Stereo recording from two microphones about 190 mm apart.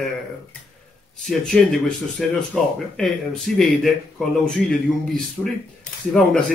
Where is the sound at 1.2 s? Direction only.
Centre (ahead or behind).